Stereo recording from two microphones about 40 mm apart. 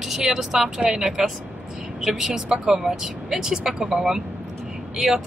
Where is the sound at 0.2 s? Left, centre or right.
Centre.